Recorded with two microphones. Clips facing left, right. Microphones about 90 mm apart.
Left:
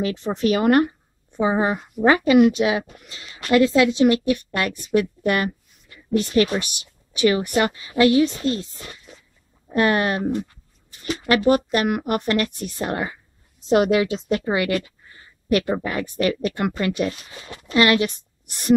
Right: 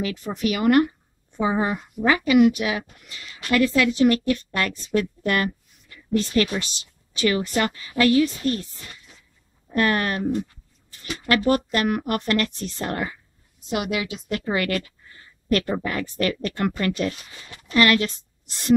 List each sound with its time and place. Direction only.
0.0 s a woman's voice: 25° left (ahead or behind)
1.3 s speech: 20° left (ahead or behind)
2.0 s a woman's voice: 30° left (ahead or behind)
9.7 s a woman's voice: 20° left (ahead or behind)
13.7 s a woman's voice: 35° left (ahead or behind)